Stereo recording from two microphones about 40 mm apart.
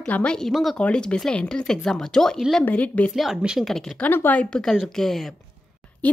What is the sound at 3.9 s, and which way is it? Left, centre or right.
Speech, centre.